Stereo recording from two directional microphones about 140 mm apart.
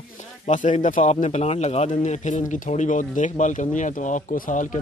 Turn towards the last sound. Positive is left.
turn(degrees=65)  # may be behind; listen again after turning